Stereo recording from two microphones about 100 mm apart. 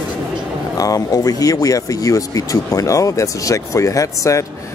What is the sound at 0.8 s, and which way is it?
Speech, 40° left (ahead or behind).